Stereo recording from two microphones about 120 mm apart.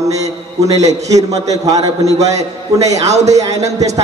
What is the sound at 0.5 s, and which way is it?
A man's voice, 30° right (ahead or behind).